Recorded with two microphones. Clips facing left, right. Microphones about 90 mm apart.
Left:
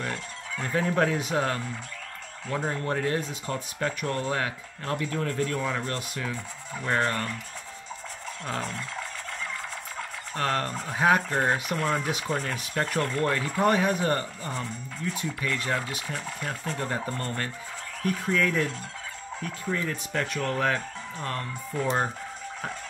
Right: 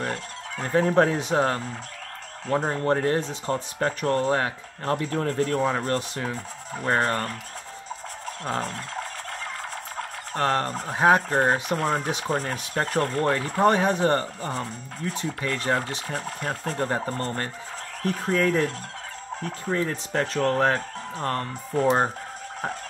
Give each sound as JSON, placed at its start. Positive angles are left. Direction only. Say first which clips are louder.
{"t": 0.0, "sound": "speech", "louder": "right 3 dB", "side_deg": -35}
{"t": 8.5, "sound": "speech", "louder": "right 4 dB", "side_deg": -40}
{"t": 9.9, "sound": "speech", "louder": "right 4 dB", "side_deg": -35}